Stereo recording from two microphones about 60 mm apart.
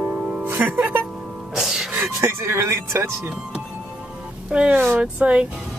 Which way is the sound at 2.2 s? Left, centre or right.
Right.